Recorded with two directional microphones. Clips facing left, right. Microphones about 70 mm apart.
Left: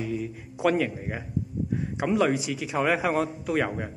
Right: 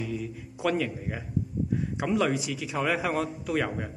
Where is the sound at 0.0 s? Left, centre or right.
Left.